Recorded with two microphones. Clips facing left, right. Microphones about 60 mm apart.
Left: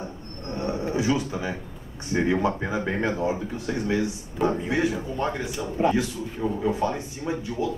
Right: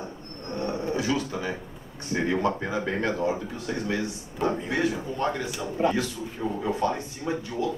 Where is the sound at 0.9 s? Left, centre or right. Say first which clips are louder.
Left 2 dB; centre.